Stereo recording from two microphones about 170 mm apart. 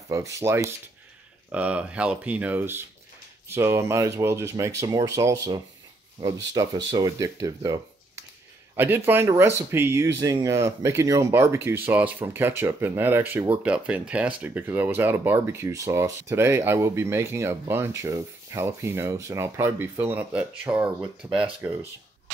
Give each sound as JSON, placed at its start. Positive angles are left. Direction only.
{"t": 0.1, "sound": "speech", "side_deg": -15}